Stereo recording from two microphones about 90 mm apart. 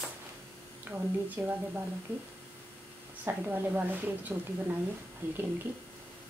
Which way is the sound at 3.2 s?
20° right (ahead or behind).